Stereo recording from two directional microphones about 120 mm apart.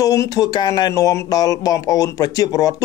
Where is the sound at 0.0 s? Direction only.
30° left (ahead or behind).